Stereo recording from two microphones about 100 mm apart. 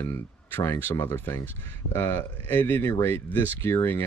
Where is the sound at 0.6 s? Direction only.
25° left (ahead or behind).